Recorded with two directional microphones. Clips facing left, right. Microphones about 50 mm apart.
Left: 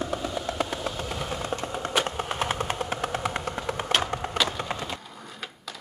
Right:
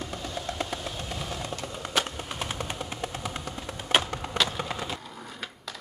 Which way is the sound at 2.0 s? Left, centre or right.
Left.